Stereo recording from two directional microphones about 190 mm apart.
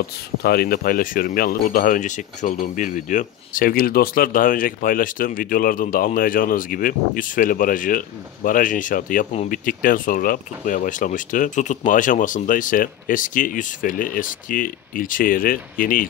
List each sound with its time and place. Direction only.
0.4 s speech: 55° left (ahead or behind)